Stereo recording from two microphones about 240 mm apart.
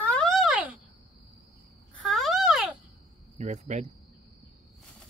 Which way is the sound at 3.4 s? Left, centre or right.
Right.